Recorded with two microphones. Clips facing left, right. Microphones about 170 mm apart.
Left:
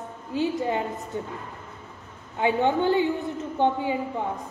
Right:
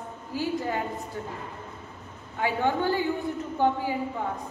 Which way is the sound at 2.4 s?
20° left (ahead or behind).